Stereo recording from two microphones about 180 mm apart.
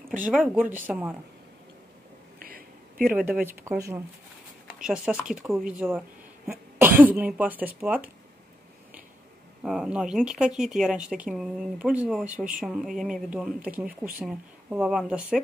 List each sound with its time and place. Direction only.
0.7 s speech: 10° right (ahead or behind)
2.3 s a sound: 55° right (ahead or behind)
3.1 s speech: 10° right (ahead or behind)
4.8 s speech: 5° right (ahead or behind)
9.6 s speech: 5° right (ahead or behind)
13.8 s speech: 55° right (ahead or behind)
14.2 s speech: 5° right (ahead or behind)